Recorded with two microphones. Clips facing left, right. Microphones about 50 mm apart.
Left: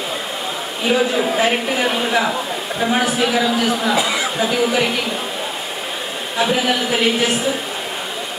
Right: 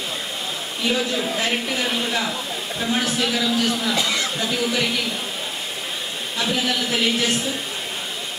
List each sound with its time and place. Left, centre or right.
0.8 s speech: left
6.3 s speech: left